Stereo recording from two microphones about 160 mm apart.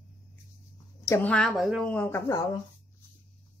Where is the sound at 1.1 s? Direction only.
10° left (ahead or behind).